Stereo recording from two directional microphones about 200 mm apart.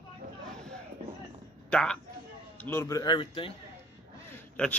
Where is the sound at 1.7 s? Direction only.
5° left (ahead or behind); by 3.5 s 25° left (ahead or behind).